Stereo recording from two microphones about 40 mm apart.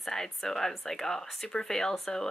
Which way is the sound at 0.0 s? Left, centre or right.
Centre.